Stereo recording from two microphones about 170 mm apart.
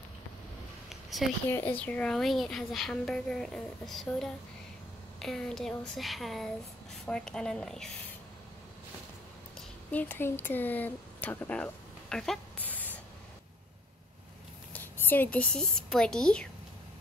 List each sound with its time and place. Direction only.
1.5 s a woman's voice: 10° left (ahead or behind)
9.8 s speech: 10° left (ahead or behind)
14.7 s a woman's voice: 10° left (ahead or behind)